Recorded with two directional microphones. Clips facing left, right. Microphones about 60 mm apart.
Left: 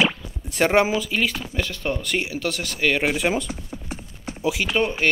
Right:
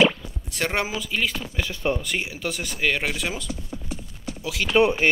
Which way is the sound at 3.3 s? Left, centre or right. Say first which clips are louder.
Left 6 dB; left.